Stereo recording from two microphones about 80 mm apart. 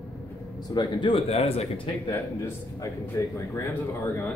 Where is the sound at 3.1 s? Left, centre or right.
Left.